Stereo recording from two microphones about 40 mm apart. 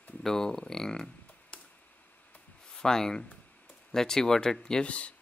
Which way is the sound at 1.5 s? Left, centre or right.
Left.